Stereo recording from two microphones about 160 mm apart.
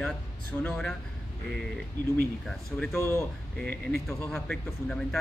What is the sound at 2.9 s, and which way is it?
Speech, 15° left (ahead or behind).